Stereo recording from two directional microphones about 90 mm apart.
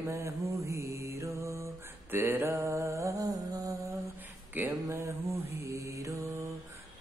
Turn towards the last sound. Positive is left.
turn(degrees=-35)  # may be behind; listen again after turning